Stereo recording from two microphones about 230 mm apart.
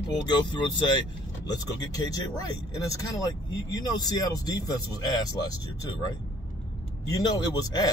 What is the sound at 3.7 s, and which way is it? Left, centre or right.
Speech, centre.